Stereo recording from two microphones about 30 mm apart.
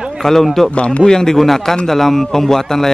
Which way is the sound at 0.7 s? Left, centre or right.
Left.